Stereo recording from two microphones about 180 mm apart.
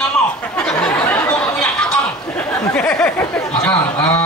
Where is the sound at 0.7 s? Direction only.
5° left (ahead or behind).